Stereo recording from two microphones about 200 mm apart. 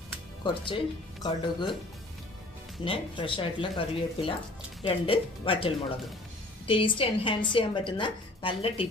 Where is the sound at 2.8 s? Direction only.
25° left (ahead or behind).